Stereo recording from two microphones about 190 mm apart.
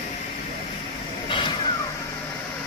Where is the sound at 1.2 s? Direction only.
25° left (ahead or behind).